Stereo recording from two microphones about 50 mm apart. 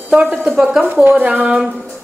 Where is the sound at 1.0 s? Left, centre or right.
Right.